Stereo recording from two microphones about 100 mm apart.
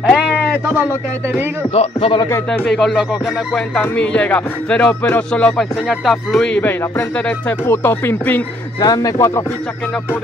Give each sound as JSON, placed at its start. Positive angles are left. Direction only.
{"t": 0.0, "sound": "a sound", "side_deg": 15}
{"t": 1.7, "sound": "speech", "side_deg": 80}
{"t": 2.5, "sound": "speech", "side_deg": 10}
{"t": 3.8, "sound": "speech", "side_deg": 15}
{"t": 6.5, "sound": "speech", "side_deg": 20}
{"t": 8.8, "sound": "speech", "side_deg": 40}